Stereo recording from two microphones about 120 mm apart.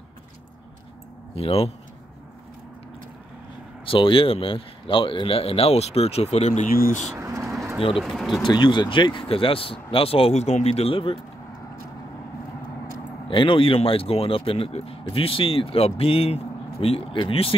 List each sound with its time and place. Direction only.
1.3 s speech: 55° left (ahead or behind)
3.8 s speech: 45° left (ahead or behind); by 7.1 s 85° left
7.2 s pigeon: 25° right (ahead or behind)
8.0 s speech: centre (ahead or behind)
8.4 s speech: 40° left (ahead or behind)
13.3 s speech: 45° left (ahead or behind)